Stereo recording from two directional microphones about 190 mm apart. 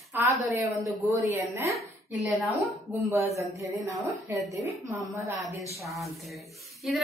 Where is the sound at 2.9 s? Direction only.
15° right (ahead or behind).